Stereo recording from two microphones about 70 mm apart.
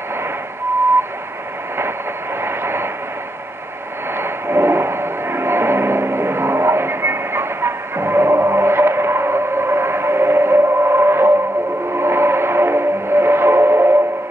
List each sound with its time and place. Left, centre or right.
2.4 s vehicle: right
4.2 s gong: right
12.0 s a sound: right